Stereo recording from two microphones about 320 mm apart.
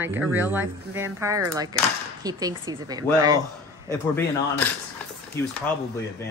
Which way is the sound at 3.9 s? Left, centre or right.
Centre.